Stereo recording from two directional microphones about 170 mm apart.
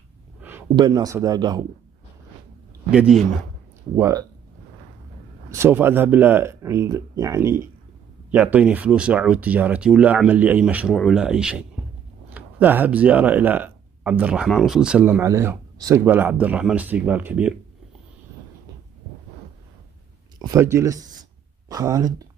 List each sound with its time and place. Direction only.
0.4 s a sound: 10° right (ahead or behind)
0.7 s a man's voice: 25° right (ahead or behind)
2.9 s speech: 5° right (ahead or behind)
3.9 s a man's voice: 20° right (ahead or behind)
5.5 s speech: 15° right (ahead or behind)
20.3 s speech: 15° right (ahead or behind)